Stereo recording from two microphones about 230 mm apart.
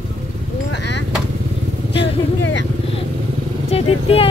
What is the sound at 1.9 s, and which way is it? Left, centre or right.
Speech, left.